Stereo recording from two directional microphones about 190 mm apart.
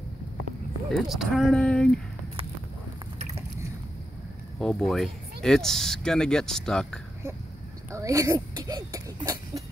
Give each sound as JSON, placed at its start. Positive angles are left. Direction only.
{"t": 0.8, "sound": "speech", "side_deg": 0}
{"t": 4.6, "sound": "speech", "side_deg": 0}
{"t": 7.9, "sound": "speech", "side_deg": -15}